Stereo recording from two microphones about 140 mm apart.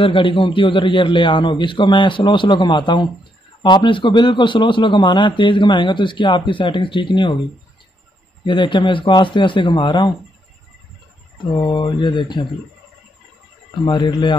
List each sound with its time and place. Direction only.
0.0 s a man's voice: 40° left (ahead or behind)
8.5 s a man's voice: 35° left (ahead or behind)
11.5 s a man's voice: 35° left (ahead or behind)
13.8 s a man's voice: 35° left (ahead or behind)